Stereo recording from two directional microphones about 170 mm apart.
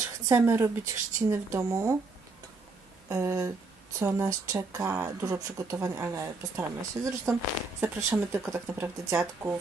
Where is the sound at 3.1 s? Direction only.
15° right (ahead or behind).